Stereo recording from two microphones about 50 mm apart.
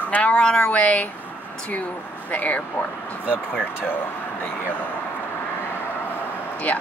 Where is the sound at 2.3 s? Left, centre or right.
Left.